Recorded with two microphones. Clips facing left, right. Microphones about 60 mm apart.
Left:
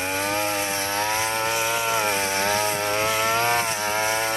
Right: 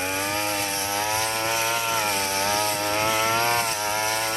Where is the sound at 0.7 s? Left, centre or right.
Left.